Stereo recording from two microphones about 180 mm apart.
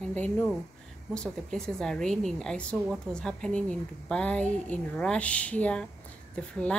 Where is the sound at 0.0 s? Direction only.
10° left (ahead or behind).